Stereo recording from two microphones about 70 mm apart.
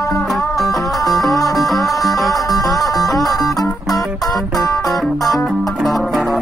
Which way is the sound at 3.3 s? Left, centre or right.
Left.